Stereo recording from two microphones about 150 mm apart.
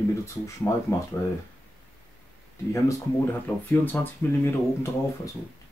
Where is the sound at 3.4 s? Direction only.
10° left (ahead or behind).